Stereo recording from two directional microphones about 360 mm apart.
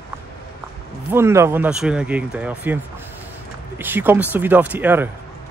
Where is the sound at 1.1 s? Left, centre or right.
Centre.